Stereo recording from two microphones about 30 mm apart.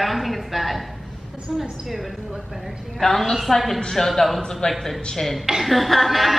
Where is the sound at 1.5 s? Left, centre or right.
Centre.